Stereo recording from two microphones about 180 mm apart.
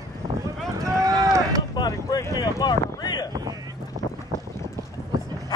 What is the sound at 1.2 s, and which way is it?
Run, 20° right (ahead or behind).